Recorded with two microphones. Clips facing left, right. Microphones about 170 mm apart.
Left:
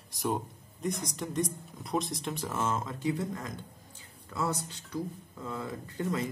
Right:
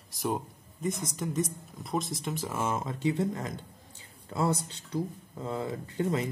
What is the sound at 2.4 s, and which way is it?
Speech, 10° right (ahead or behind).